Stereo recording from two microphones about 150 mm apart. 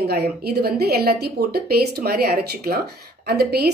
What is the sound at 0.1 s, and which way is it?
A woman's voice, 90° right.